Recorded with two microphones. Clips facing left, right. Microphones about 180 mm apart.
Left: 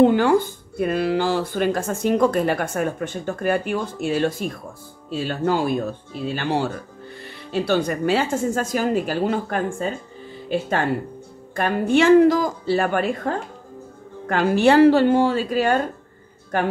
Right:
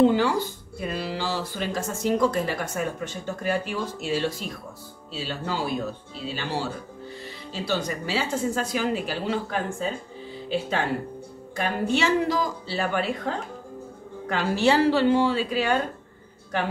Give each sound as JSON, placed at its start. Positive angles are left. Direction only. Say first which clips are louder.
{"t": 0.0, "sound": "speech", "louder": "left 5 dB", "side_deg": 55}
{"t": 11.5, "sound": "speech", "louder": "left 6 dB", "side_deg": 55}